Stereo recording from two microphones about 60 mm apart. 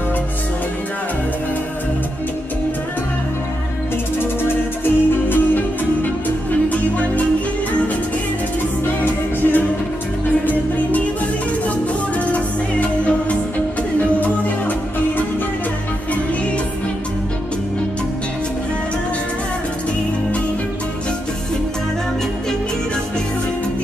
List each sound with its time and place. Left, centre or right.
4.8 s music: left
9.0 s music: left
12.8 s music: left